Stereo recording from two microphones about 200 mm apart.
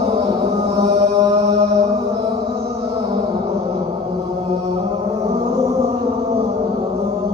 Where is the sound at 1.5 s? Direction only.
30° right (ahead or behind).